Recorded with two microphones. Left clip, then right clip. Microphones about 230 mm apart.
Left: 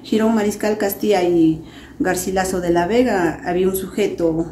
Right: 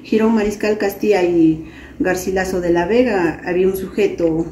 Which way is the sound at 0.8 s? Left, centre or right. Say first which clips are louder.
Right 1 dB; centre.